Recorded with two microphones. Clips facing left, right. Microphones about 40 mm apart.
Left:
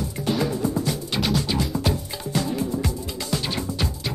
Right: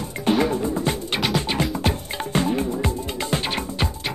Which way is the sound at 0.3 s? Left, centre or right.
Right.